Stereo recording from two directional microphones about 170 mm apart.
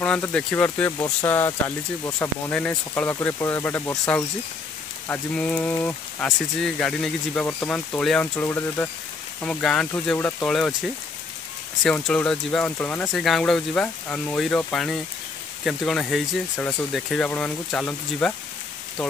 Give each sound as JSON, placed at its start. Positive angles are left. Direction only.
{"t": 0.0, "sound": "speech", "side_deg": 5}